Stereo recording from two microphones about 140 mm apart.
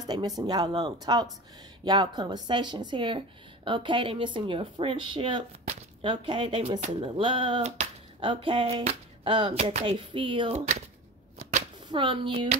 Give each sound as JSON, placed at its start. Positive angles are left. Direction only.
{"t": 0.0, "sound": "a woman's voice", "side_deg": -30}
{"t": 7.6, "sound": "speech", "side_deg": -55}
{"t": 8.2, "sound": "a woman's voice", "side_deg": -40}
{"t": 9.9, "sound": "a woman's voice", "side_deg": -35}
{"t": 11.9, "sound": "a woman's voice", "side_deg": -40}